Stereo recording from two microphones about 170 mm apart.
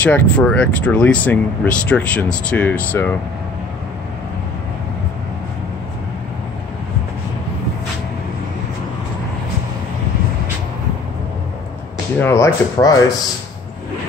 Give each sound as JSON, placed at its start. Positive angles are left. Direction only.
{"t": 0.0, "sound": "speech", "side_deg": 5}
{"t": 12.2, "sound": "speech", "side_deg": 15}